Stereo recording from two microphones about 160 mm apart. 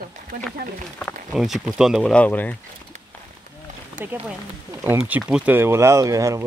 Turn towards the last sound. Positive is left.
turn(degrees=-20)  # may be behind; listen again after turning